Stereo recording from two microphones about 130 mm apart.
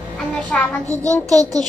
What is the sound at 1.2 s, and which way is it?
Speech, 30° right (ahead or behind).